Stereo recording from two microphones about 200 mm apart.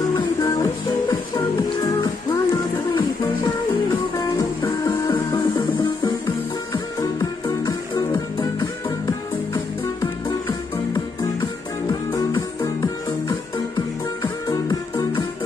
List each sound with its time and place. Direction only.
0.0 s music: 20° left (ahead or behind)
11.9 s music: 20° left (ahead or behind)